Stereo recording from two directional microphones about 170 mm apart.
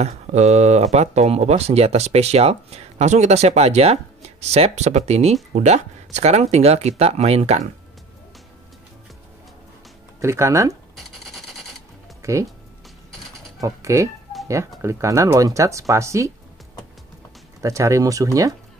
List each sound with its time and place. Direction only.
0.0 s speech: 40° right (ahead or behind)
10.2 s speech: 15° right (ahead or behind)
10.7 s a sound: centre (ahead or behind)
12.2 s speech: 20° right (ahead or behind)
13.6 s speech: 20° right (ahead or behind)
17.6 s speech: 20° right (ahead or behind)